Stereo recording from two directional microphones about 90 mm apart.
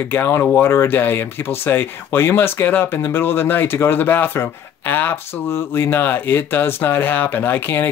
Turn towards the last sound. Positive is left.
turn(degrees=25)  # may be behind; listen again after turning